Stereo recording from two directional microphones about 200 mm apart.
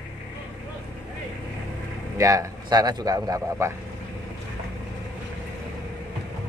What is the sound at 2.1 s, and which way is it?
Speech, 15° right (ahead or behind).